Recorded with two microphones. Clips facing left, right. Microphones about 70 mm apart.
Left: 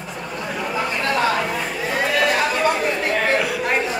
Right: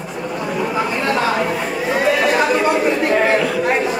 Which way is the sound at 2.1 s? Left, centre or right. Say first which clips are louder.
Right 4 dB; right.